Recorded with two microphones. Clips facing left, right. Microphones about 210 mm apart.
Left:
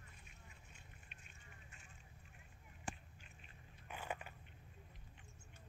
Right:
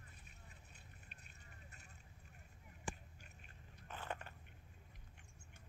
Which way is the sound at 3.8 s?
10° left (ahead or behind).